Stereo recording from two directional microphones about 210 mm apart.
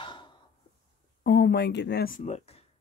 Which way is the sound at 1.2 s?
50° left (ahead or behind).